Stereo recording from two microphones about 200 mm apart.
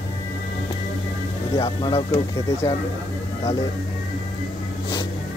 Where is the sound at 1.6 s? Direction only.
25° left (ahead or behind).